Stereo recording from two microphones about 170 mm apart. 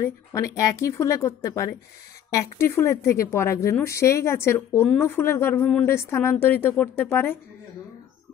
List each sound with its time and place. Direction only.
0.0 s a woman's voice: 20° left (ahead or behind)